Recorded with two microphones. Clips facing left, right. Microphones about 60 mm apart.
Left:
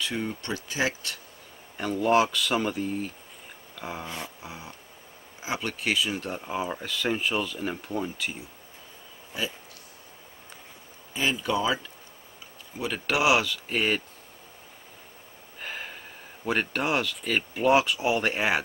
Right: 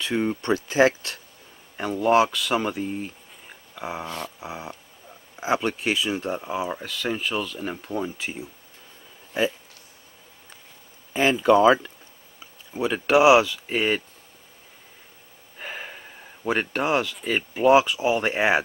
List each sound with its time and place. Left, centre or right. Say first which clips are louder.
0.0 s speech: right 6 dB; right
1.8 s speech: right 3 dB; centre
3.7 s a sound: right 4 dB; centre
4.4 s speech: right 6 dB; right
6.3 s speech: right 3 dB; centre
11.1 s speech: right 9 dB; right
12.7 s speech: right 8 dB; right
13.7 s speech: right 3 dB; centre
15.6 s a sound: right 2 dB; centre
17.4 s speech: right 5 dB; centre
18.3 s speech: right 5 dB; right